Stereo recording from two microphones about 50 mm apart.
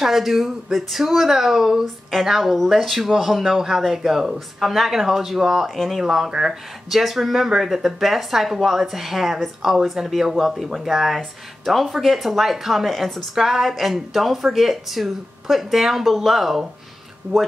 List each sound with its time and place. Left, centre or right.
0.0 s speech: centre